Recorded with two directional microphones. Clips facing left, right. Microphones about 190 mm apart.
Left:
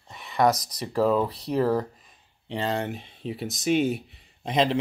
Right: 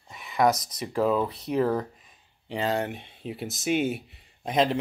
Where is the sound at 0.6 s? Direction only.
35° left (ahead or behind).